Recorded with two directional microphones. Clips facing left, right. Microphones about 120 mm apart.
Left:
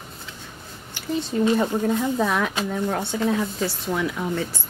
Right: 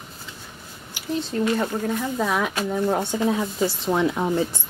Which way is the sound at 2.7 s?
15° right (ahead or behind).